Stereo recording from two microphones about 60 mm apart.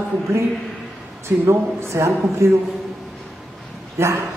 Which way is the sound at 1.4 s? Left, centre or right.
Right.